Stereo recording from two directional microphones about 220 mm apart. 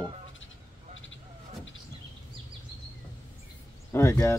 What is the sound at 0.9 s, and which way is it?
Vehicle, 60° left (ahead or behind).